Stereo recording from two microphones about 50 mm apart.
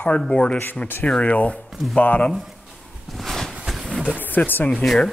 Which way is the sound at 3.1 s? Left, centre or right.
Centre.